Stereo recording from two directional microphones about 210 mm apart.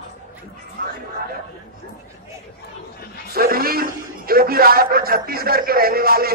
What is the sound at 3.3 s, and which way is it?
A man's voice, 45° right (ahead or behind).